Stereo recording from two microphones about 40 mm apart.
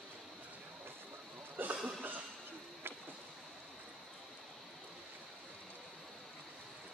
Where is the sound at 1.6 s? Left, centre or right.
Right.